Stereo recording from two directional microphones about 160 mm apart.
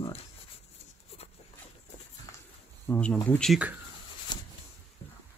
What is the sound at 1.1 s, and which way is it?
Dog, 40° left (ahead or behind).